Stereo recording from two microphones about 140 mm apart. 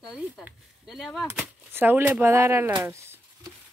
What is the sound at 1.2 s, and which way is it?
Speech, 15° right (ahead or behind).